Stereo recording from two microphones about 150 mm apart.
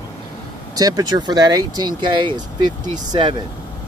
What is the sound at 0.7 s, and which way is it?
Speech, 25° right (ahead or behind).